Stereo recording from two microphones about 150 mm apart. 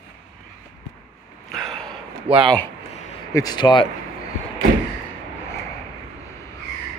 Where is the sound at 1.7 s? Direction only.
5° left (ahead or behind).